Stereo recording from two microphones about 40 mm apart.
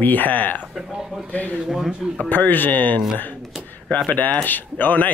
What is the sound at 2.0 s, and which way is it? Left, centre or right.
Speech, centre.